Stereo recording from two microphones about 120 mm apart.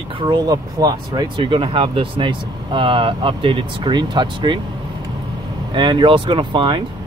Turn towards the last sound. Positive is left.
turn(degrees=-40)  # may be behind; listen again after turning